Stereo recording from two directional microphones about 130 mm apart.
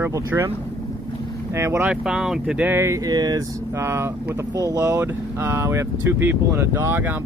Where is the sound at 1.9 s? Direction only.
5° right (ahead or behind).